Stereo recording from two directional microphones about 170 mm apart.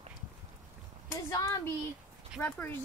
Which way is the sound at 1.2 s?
20° left (ahead or behind).